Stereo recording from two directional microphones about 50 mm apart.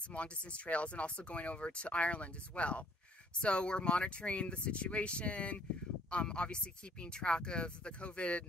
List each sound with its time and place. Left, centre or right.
0.1 s speech: left